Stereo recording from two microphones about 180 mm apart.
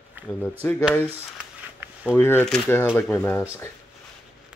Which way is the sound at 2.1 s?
10° left (ahead or behind).